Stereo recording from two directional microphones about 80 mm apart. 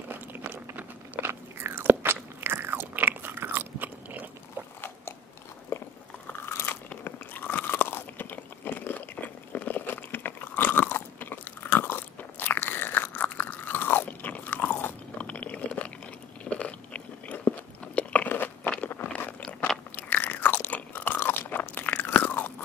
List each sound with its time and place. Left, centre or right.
0.1 s biting: right
5.7 s biting: left
7.1 s crunch: left
16.4 s biting: centre
20.0 s crunch: left